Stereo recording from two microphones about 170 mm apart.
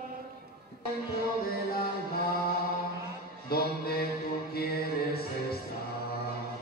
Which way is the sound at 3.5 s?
65° left (ahead or behind).